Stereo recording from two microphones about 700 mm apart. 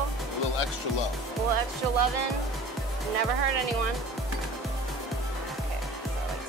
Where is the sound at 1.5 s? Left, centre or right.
Right.